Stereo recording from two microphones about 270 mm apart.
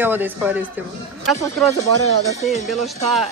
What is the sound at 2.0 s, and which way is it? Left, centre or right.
Speech, left.